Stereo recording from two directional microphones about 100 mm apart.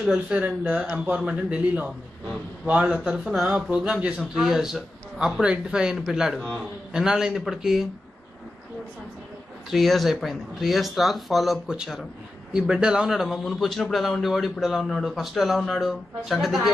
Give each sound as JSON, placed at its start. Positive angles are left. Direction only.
{"t": 0.0, "sound": "a man's voice", "side_deg": 0}
{"t": 0.4, "sound": "a man's voice", "side_deg": -15}
{"t": 9.7, "sound": "a man's voice", "side_deg": 0}